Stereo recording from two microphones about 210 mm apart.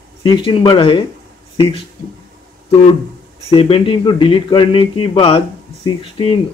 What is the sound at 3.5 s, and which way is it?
A man's voice, 25° left (ahead or behind).